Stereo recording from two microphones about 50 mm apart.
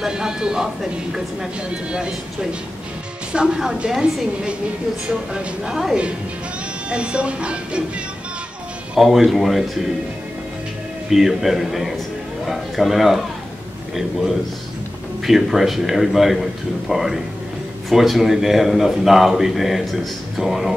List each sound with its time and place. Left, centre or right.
0.0 s a woman's voice: centre
1.9 s a woman's voice: centre
3.3 s a woman's voice: centre
6.9 s speech: right
8.9 s a man's voice: centre
11.1 s a man's voice: centre
15.2 s a man's voice: centre